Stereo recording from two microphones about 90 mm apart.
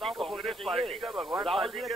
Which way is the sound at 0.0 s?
Centre (ahead or behind).